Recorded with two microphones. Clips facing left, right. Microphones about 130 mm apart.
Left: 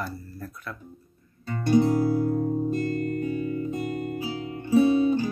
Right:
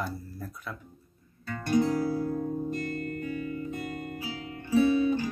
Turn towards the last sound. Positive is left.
turn(degrees=35)  # may be behind; listen again after turning